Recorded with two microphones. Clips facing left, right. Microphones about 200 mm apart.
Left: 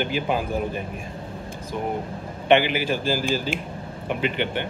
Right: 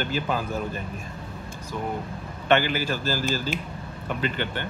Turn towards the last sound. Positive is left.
turn(degrees=15)  # may be behind; listen again after turning